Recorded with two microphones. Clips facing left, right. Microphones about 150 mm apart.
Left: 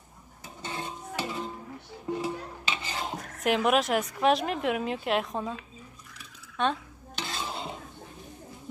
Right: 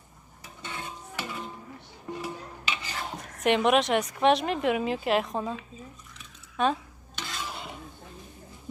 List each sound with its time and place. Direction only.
0.6 s music: 30° left (ahead or behind)
2.2 s filing: 20° left (ahead or behind)
3.2 s a woman's voice: centre (ahead or behind)
6.1 s a sound: 5° right (ahead or behind)
7.2 s stir: 30° left (ahead or behind)